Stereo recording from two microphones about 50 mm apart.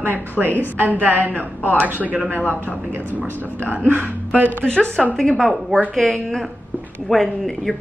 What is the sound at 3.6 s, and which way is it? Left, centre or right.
A woman's voice, right.